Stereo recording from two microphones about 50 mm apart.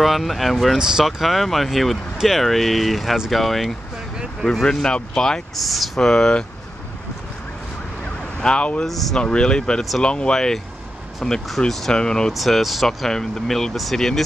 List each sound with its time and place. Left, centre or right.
0.0 s speech: centre
0.7 s speech: centre
1.0 s speech: centre
4.7 s speech: centre
5.6 s speech: centre
5.9 s speech: centre
8.4 s speech: centre
8.8 s speech: centre
9.2 s speech: centre
12.3 s speech: centre